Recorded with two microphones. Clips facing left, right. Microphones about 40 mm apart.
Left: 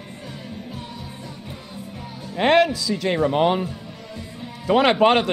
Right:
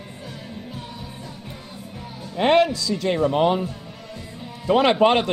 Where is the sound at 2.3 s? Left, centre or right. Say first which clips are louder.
Even; centre.